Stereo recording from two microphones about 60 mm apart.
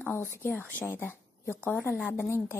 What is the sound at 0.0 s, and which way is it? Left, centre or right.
A woman's voice, left.